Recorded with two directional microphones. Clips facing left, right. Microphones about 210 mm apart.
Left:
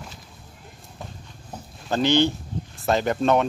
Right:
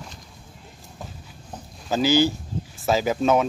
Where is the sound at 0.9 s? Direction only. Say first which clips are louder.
Even; centre (ahead or behind).